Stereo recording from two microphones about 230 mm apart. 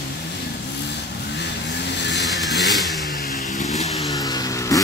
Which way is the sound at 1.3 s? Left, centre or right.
Left.